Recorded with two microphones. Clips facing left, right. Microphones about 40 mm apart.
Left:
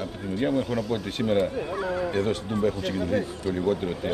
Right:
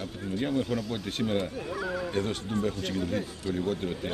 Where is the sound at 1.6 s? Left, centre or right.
Left.